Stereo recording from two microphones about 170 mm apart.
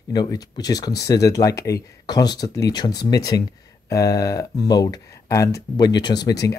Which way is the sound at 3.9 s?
20° left (ahead or behind).